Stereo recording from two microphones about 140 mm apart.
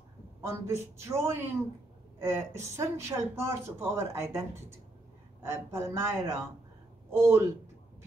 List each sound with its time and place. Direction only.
0.4 s speech: 20° right (ahead or behind)